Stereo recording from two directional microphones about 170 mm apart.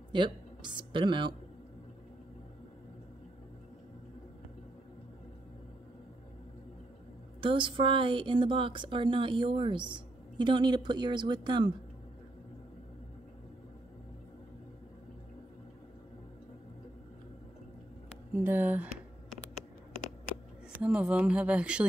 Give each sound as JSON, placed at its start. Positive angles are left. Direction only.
{"t": 0.1, "sound": "speech", "side_deg": -25}
{"t": 7.3, "sound": "a woman's voice", "side_deg": -30}
{"t": 18.3, "sound": "speech", "side_deg": -15}
{"t": 20.7, "sound": "speech", "side_deg": -5}